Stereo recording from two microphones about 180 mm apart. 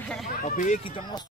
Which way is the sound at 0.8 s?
30° left (ahead or behind).